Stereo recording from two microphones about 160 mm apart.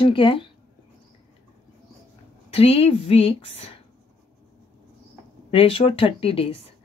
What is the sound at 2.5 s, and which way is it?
A woman's voice, 35° left (ahead or behind).